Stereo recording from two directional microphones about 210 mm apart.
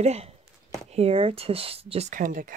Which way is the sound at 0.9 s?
30° right (ahead or behind).